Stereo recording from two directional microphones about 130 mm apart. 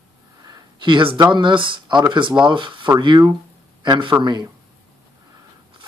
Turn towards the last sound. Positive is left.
turn(degrees=-30)  # may be behind; listen again after turning